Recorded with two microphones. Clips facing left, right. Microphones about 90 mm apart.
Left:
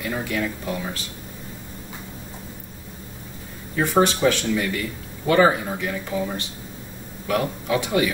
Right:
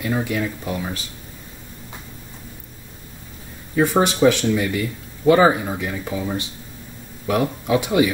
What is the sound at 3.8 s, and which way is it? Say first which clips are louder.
Speech: right 3 dB; 15° right (ahead or behind).